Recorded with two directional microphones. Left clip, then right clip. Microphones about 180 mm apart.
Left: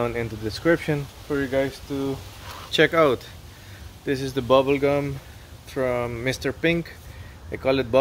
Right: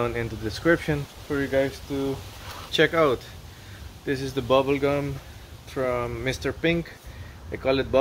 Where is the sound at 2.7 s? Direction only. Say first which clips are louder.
Left 2 dB; 60° left (ahead or behind).